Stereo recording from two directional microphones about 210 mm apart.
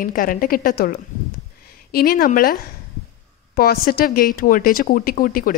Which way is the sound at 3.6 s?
45° left (ahead or behind).